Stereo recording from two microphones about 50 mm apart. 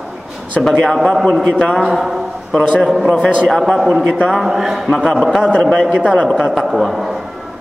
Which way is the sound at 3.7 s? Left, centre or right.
Centre.